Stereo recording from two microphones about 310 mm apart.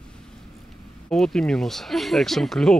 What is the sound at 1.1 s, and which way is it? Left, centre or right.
Speech, centre.